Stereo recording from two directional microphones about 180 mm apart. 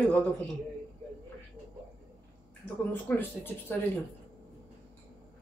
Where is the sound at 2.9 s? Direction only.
10° left (ahead or behind).